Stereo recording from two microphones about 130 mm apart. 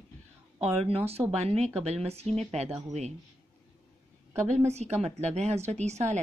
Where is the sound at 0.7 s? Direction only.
50° right (ahead or behind).